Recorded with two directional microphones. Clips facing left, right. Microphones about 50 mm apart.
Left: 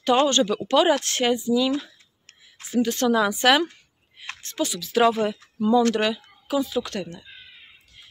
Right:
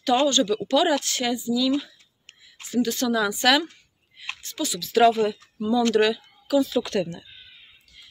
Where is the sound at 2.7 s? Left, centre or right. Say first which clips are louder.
Left 2 dB; left.